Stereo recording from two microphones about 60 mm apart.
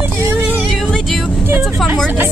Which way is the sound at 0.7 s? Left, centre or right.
Centre.